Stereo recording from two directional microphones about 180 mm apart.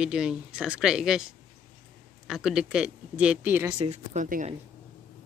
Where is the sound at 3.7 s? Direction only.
40° right (ahead or behind).